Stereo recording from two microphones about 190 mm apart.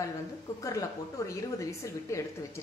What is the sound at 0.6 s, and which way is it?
A woman's voice, 15° left (ahead or behind).